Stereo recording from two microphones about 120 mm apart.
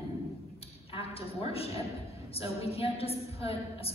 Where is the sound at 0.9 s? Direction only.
55° left (ahead or behind).